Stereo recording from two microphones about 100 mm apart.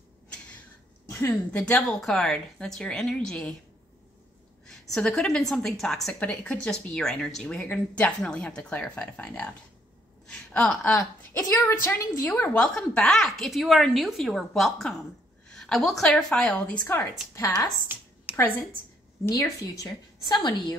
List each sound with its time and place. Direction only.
1.1 s a woman's voice: 25° left (ahead or behind)
1.6 s a woman's voice: 10° left (ahead or behind)
4.6 s a woman's voice: 5° left (ahead or behind)
11.7 s a woman's voice: 25° left (ahead or behind)
12.3 s a woman's voice: 15° left (ahead or behind)
17.4 s a woman's voice: 30° left (ahead or behind)
17.9 s a woman's voice: 20° right (ahead or behind)
18.3 s a woman's voice: 20° left (ahead or behind)
19.2 s a woman's voice: 35° left (ahead or behind)
20.3 s a woman's voice: 45° left (ahead or behind)